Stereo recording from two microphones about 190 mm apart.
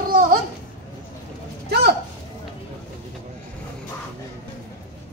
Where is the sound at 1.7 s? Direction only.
60° right (ahead or behind).